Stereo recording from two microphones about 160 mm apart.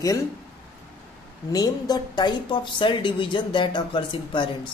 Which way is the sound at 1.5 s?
25° left (ahead or behind).